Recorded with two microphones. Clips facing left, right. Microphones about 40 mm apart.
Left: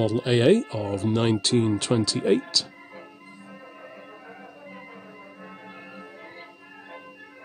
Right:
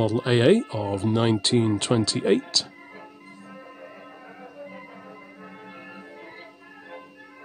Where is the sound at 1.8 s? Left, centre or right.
Right.